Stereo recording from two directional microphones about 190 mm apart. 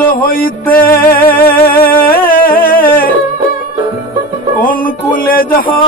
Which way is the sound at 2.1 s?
50° left (ahead or behind).